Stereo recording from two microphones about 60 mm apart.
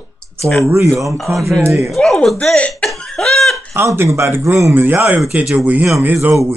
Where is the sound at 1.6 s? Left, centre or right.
Right.